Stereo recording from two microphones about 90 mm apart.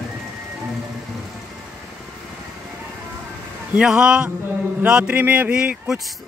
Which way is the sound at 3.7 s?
10° right (ahead or behind).